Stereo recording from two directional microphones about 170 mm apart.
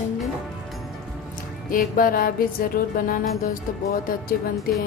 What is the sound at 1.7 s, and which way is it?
Music, 55° left (ahead or behind).